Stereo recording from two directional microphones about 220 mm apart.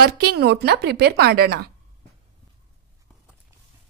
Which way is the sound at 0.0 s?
45° right (ahead or behind).